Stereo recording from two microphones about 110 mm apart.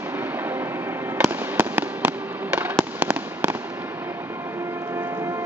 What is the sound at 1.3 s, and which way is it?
Fireworks, 20° right (ahead or behind).